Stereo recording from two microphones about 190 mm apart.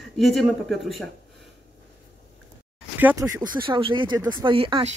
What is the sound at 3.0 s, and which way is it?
Speech, 10° right (ahead or behind).